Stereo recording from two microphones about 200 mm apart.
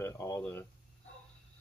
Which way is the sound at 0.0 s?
15° left (ahead or behind).